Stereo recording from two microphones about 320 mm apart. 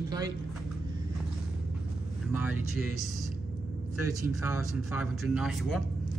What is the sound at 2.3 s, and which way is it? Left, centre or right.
Speech, centre.